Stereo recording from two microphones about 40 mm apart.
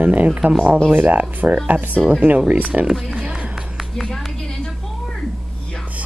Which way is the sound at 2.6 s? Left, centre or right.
Right.